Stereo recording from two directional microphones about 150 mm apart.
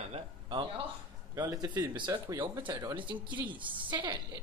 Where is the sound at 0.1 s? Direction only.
35° right (ahead or behind).